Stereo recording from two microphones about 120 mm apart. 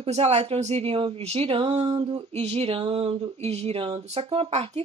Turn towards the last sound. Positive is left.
turn(degrees=-55)  # may be behind; listen again after turning